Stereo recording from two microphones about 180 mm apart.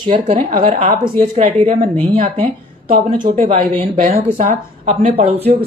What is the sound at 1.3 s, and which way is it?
Speech, 35° right (ahead or behind).